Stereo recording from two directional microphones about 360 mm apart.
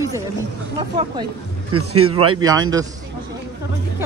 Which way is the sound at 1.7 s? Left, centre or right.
Right.